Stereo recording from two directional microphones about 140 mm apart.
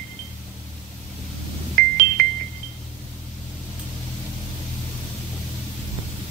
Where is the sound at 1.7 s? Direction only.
80° right.